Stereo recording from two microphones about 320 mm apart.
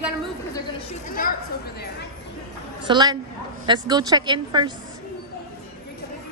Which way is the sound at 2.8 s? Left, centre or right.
Centre.